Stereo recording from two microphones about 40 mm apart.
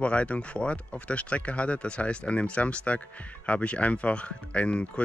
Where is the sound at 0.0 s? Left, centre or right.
Left.